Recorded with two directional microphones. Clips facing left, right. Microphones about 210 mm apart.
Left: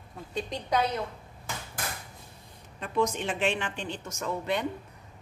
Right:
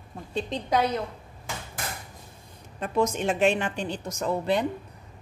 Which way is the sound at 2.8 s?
45° right (ahead or behind).